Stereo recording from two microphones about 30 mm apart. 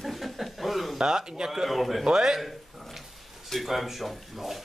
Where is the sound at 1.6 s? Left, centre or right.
Centre.